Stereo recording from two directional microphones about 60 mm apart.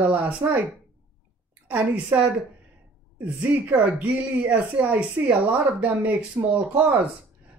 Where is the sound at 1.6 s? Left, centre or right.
Right.